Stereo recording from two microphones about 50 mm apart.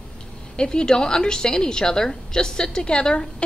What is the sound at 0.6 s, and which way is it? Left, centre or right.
A woman's voice, centre.